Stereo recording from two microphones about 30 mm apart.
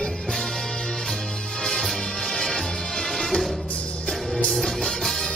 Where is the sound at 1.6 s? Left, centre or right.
Centre.